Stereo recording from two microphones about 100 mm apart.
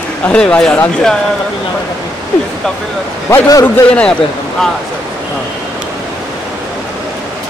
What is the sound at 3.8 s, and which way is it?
Speech, 15° left (ahead or behind).